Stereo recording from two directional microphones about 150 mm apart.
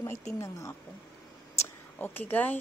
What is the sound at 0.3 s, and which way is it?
Speech, 20° left (ahead or behind).